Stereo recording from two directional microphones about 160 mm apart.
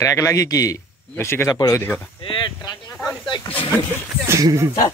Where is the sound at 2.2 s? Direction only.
30° left (ahead or behind).